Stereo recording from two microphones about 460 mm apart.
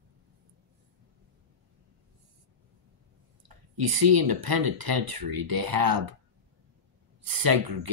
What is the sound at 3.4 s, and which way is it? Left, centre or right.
Speech, right.